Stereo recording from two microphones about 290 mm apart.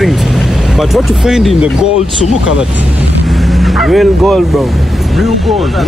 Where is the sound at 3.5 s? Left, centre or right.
Centre.